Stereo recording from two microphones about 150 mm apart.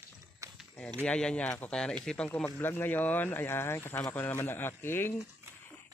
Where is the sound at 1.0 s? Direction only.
5° left (ahead or behind).